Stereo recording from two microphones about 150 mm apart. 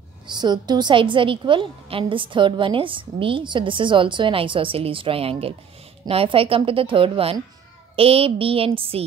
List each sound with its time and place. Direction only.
0.3 s a woman's voice: 30° right (ahead or behind)